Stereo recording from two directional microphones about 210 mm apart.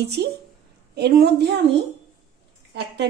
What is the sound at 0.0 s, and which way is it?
A woman's voice, 50° right (ahead or behind).